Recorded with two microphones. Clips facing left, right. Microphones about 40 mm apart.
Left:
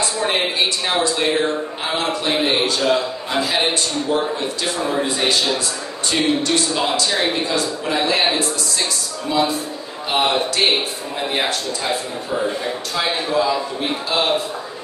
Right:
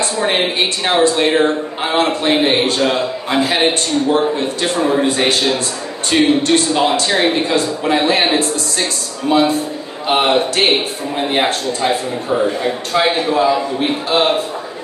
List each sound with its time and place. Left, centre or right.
0.0 s a man's voice: right